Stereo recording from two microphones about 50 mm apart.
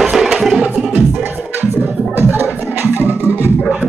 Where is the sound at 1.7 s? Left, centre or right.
Right.